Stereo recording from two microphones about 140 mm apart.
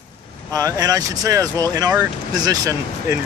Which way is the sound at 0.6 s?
25° right (ahead or behind).